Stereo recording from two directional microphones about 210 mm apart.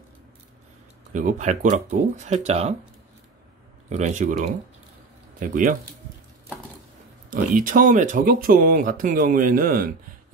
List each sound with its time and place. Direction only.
1.1 s speech: 35° right (ahead or behind)
3.9 s speech: 35° right (ahead or behind)
7.2 s speech: 40° right (ahead or behind)